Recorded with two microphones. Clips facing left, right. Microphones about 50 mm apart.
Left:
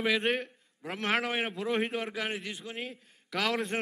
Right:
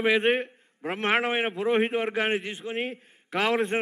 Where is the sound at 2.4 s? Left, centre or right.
Right.